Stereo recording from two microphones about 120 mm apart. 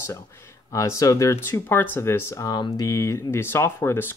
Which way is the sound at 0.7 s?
25° left (ahead or behind).